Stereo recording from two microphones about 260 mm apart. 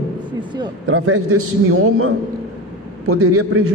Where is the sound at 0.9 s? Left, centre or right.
Right.